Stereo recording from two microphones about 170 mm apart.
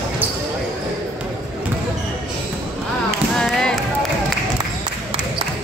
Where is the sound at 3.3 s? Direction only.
5° left (ahead or behind).